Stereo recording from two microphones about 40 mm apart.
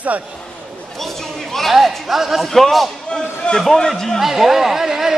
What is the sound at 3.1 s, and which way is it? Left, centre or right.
Speech, left.